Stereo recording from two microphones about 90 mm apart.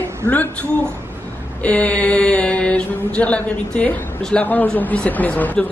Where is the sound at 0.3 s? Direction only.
15° left (ahead or behind).